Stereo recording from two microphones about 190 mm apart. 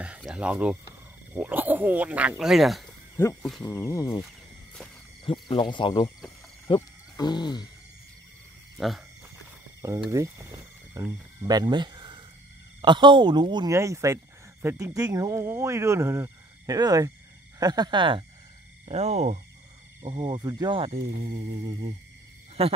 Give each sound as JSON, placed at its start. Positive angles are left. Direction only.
{"t": 0.0, "sound": "speech", "side_deg": -5}
{"t": 3.2, "sound": "speech", "side_deg": 10}
{"t": 6.7, "sound": "wild animals", "side_deg": 20}
{"t": 8.7, "sound": "speech", "side_deg": 0}
{"t": 10.1, "sound": "speech", "side_deg": -15}
{"t": 22.6, "sound": "speech", "side_deg": -30}